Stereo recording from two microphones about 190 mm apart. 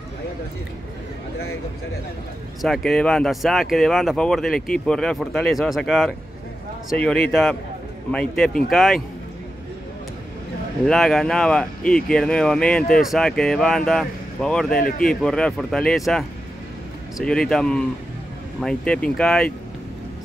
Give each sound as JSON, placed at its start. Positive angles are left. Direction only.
{"t": 2.6, "sound": "speech", "side_deg": 0}
{"t": 10.9, "sound": "speech", "side_deg": 0}
{"t": 14.8, "sound": "speech", "side_deg": 50}
{"t": 15.0, "sound": "speech", "side_deg": 5}